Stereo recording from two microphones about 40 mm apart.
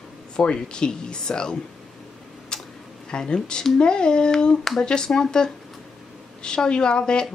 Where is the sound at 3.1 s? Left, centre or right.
Left.